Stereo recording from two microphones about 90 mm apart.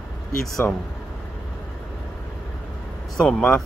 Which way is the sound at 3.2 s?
5° left (ahead or behind).